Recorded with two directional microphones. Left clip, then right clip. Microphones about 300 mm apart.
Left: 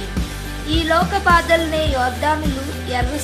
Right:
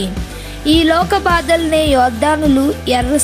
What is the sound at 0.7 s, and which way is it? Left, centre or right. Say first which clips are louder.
Speech: right 6 dB; right.